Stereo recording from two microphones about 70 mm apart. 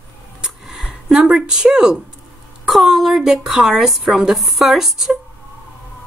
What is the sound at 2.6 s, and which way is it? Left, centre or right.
A woman's voice, centre.